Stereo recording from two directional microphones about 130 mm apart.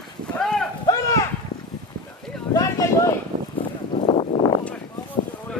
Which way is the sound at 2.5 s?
25° left (ahead or behind).